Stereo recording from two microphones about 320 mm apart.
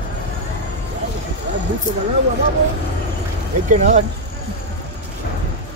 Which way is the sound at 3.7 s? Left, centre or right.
Right.